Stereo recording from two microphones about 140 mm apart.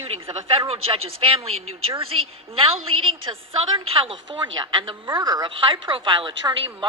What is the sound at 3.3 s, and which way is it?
A woman's voice, 40° right (ahead or behind).